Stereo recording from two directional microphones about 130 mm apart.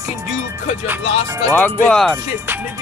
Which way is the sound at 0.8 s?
20° right (ahead or behind).